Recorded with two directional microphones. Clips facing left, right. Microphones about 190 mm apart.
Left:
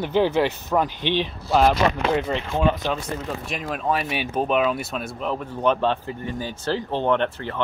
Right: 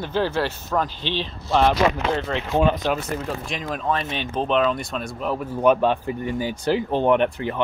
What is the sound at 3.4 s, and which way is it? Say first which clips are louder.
Speech: left 3 dB; 5° left (ahead or behind).